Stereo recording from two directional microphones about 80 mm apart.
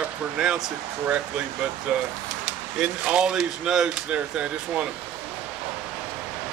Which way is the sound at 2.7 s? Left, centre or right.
Centre.